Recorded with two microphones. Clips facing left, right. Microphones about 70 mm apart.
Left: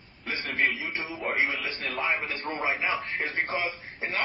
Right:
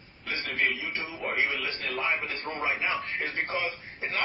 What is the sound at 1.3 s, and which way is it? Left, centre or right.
Speech, centre.